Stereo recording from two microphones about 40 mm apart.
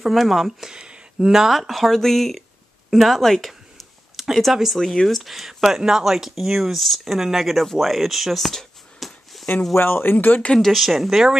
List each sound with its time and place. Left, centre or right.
0.0 s speech: centre
0.7 s a sound: right
1.3 s speech: centre
4.7 s speech: centre
5.0 s speech: centre
8.5 s a sound: centre
9.8 s speech: left
10.6 s speech: centre